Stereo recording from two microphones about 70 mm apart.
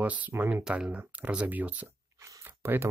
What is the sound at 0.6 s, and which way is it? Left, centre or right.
Speech, centre.